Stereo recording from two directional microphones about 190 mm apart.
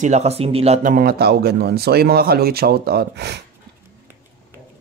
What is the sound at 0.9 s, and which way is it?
Speech, 50° right (ahead or behind).